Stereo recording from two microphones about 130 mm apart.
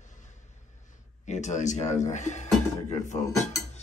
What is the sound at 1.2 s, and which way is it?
Speech, 65° left (ahead or behind).